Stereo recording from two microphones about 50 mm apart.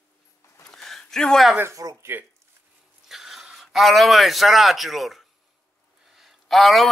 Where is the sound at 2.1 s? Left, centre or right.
Right.